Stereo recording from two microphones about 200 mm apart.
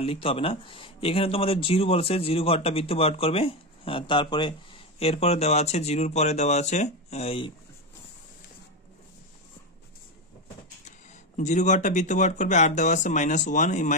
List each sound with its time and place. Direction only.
0.0 s speech: 25° left (ahead or behind)
10.9 s speech: 35° left (ahead or behind)